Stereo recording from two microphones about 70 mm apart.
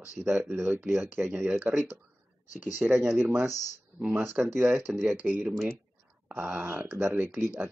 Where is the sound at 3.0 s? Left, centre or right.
Right.